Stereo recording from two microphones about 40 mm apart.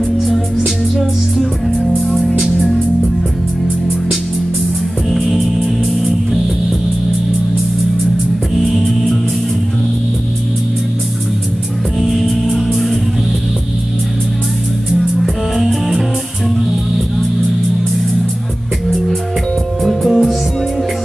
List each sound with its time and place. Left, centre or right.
1.4 s music: centre
5.1 s music: centre
8.5 s music: centre
12.0 s music: centre
15.0 s music: centre
19.8 s music: centre